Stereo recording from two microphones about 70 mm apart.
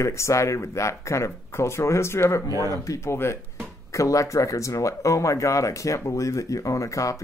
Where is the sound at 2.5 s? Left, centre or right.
Right.